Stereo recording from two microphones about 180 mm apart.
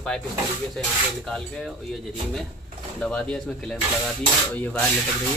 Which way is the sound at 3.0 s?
5° left (ahead or behind).